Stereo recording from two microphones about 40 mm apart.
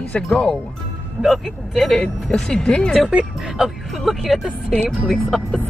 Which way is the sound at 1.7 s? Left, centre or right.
Centre.